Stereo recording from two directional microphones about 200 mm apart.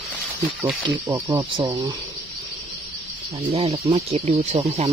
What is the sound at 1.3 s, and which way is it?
Speech, 20° right (ahead or behind).